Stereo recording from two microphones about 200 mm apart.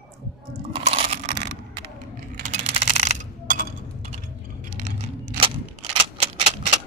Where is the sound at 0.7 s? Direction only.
30° right (ahead or behind).